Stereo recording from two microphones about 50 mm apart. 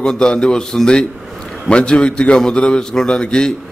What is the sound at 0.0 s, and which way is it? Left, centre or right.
A man's voice, centre.